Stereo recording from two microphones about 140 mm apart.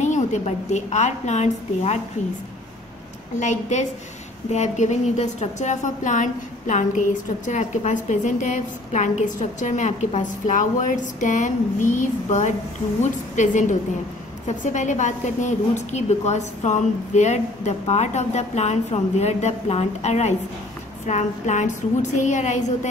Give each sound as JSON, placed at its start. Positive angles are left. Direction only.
{"t": 0.0, "sound": "a woman's voice", "side_deg": 55}
{"t": 3.3, "sound": "a woman's voice", "side_deg": 60}